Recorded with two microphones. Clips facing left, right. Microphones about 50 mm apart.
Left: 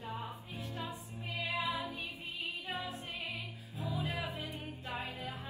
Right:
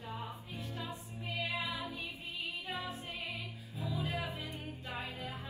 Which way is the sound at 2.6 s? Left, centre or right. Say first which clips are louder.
Even; left.